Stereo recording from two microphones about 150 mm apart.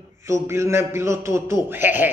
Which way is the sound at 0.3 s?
20° right (ahead or behind).